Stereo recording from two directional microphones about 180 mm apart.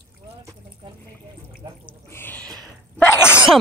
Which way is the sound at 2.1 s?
10° left (ahead or behind).